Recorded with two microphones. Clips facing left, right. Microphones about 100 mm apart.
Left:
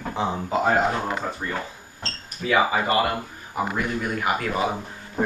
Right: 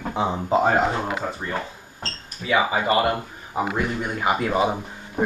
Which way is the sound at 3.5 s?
20° right (ahead or behind).